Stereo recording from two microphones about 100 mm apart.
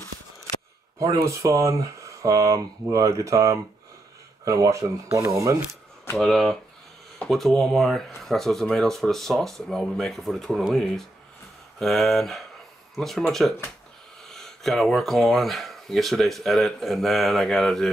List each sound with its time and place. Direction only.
0.9 s speech: 30° right (ahead or behind)
6.1 s speech: 5° left (ahead or behind)